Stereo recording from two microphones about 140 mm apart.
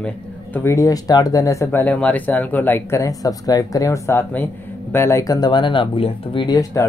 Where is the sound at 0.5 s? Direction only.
20° left (ahead or behind).